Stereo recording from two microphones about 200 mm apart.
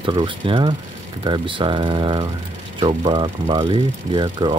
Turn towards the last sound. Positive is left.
turn(degrees=-20)  # may be behind; listen again after turning